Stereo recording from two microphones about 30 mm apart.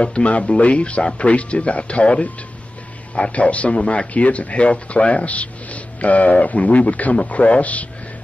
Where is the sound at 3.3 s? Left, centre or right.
Left.